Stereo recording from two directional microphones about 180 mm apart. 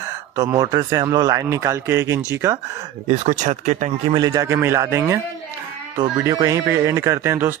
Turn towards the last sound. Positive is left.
turn(degrees=-10)  # may be behind; listen again after turning